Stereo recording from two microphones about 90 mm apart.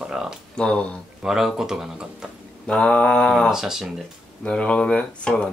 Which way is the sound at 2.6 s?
10° left (ahead or behind).